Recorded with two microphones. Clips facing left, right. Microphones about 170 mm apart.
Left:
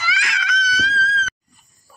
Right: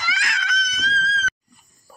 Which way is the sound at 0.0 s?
45° right (ahead or behind).